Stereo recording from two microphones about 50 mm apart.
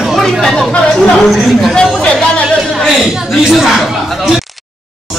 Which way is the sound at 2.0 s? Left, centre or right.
Left.